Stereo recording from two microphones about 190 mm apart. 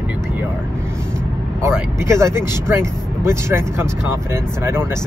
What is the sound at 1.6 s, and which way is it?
Speech, 15° right (ahead or behind).